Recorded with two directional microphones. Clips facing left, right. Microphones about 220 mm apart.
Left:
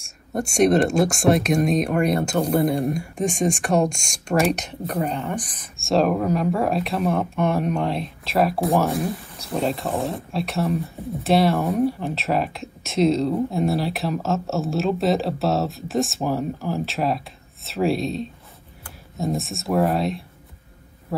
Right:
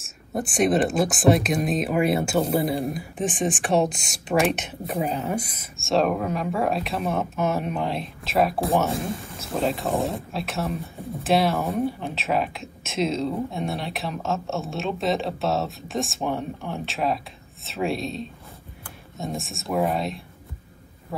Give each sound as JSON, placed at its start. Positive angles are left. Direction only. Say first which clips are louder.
{"t": 0.0, "sound": "speech", "louder": "left 2 dB", "side_deg": 0}
{"t": 8.9, "sound": "speech", "louder": "left 3 dB", "side_deg": -25}
{"t": 9.4, "sound": "speech", "louder": "left 1 dB", "side_deg": 0}